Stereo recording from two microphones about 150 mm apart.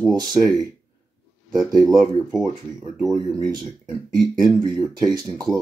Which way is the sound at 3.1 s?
25° right (ahead or behind).